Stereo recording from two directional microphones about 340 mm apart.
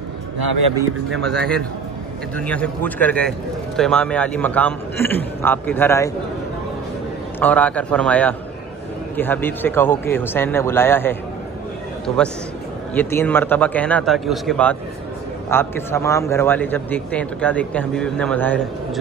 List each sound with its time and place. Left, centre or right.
1.1 s a man's voice: centre
7.3 s a man's voice: centre
12.9 s a man's voice: centre